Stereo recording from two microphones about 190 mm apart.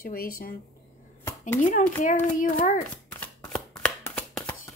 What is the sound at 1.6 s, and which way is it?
Speech, 45° left (ahead or behind).